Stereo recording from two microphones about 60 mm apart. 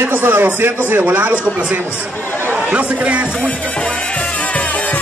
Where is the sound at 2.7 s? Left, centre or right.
Centre.